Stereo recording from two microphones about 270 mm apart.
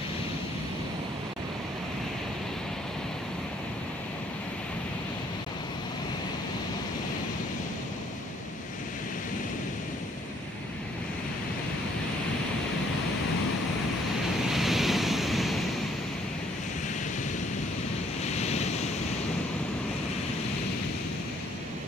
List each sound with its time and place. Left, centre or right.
14.5 s waves: centre
18.2 s waves: left